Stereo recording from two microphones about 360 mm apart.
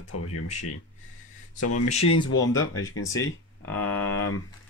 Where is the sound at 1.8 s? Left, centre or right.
Centre.